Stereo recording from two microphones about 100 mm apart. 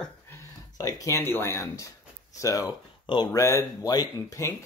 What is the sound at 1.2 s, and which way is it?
Speech, 20° left (ahead or behind).